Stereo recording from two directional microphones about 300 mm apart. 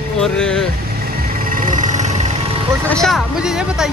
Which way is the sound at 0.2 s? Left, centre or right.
Centre.